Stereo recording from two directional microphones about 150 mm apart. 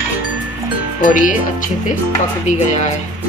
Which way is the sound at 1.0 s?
60° left (ahead or behind).